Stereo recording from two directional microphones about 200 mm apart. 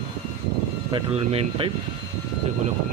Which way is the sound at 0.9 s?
25° right (ahead or behind).